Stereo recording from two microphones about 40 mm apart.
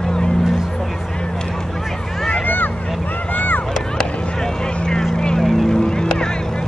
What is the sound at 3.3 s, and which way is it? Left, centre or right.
Chop, left.